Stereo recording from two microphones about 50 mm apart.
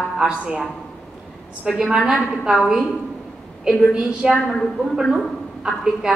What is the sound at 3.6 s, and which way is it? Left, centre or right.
Speech, centre.